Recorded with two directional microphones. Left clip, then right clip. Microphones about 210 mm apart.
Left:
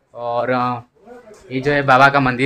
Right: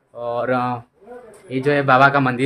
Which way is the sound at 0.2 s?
10° left (ahead or behind).